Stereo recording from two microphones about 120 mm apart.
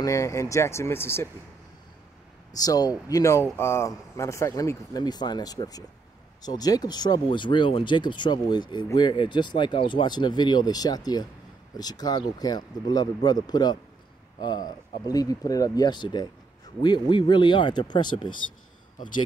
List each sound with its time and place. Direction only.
0.0 s speech: 25° left (ahead or behind)
2.5 s speech: 30° left (ahead or behind)